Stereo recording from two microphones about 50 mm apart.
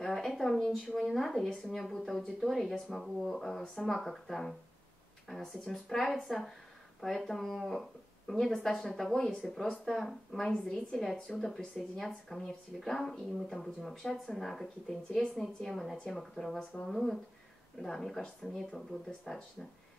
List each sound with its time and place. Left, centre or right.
0.0 s speech: centre
11.4 s speech: centre
16.5 s speech: left
16.9 s speech: centre